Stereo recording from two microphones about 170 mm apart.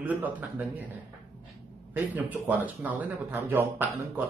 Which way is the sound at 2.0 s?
10° right (ahead or behind).